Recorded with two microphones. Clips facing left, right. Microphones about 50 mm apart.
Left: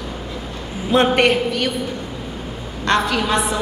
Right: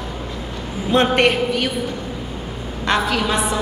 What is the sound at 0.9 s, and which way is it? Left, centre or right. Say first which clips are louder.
Speech: left 1 dB; centre.